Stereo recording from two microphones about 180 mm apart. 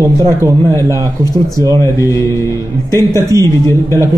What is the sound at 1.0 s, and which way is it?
Speech, 20° left (ahead or behind).